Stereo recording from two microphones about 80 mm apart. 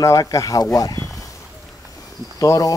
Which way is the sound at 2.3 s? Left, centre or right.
Left.